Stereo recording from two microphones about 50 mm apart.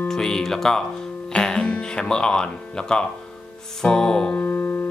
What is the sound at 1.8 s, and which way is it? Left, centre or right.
Speech, centre.